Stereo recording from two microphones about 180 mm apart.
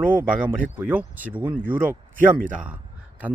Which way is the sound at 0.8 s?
10° right (ahead or behind).